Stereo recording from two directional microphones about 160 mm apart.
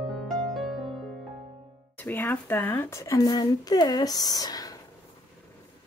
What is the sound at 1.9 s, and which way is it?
Speech, 10° left (ahead or behind).